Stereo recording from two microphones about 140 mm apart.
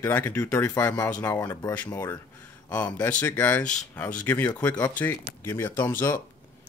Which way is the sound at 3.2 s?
10° left (ahead or behind).